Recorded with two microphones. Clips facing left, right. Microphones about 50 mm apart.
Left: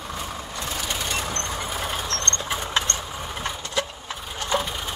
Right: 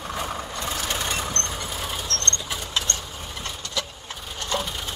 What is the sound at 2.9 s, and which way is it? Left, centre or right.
Vehicle, centre.